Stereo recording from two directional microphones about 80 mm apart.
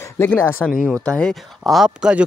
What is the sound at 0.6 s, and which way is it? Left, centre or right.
Speech, centre.